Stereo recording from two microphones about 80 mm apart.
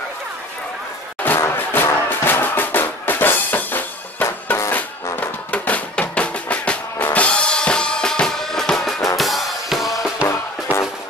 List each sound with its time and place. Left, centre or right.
1.2 s music: left; by 10.1 s centre
10.2 s music: left